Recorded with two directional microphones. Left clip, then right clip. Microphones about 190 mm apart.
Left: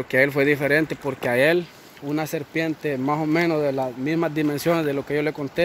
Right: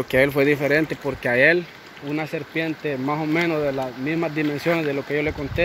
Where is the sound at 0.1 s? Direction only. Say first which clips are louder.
Even; 5° left (ahead or behind).